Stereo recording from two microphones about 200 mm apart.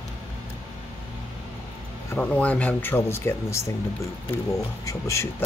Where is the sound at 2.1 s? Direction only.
5° left (ahead or behind).